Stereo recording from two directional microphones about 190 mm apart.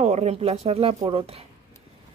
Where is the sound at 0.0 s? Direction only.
35° right (ahead or behind).